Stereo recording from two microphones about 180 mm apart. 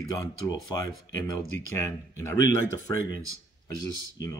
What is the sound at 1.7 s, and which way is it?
Speech, 15° left (ahead or behind).